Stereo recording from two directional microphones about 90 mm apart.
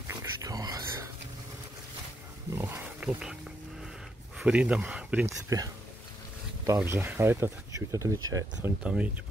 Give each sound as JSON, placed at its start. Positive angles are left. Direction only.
{"t": 0.1, "sound": "a sound", "side_deg": -40}
{"t": 2.5, "sound": "speech", "side_deg": -25}
{"t": 3.0, "sound": "speech", "side_deg": -10}
{"t": 4.4, "sound": "speech", "side_deg": -15}
{"t": 5.2, "sound": "speech", "side_deg": -40}
{"t": 6.8, "sound": "speech", "side_deg": -25}
{"t": 8.8, "sound": "speech", "side_deg": -15}